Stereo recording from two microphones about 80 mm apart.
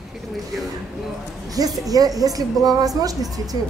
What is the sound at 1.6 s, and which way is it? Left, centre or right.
Speech, right.